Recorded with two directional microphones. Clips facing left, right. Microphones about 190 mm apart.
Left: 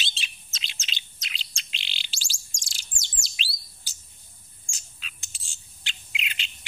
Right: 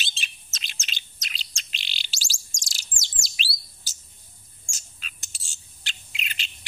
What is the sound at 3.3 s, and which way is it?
Bird, 40° right (ahead or behind).